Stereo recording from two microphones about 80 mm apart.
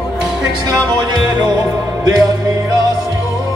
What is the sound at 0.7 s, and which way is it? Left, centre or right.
Music, right.